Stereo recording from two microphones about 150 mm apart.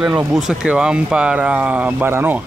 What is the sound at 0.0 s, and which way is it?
Speech, 10° right (ahead or behind).